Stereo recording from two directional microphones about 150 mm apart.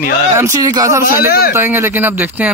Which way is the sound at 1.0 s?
80° left.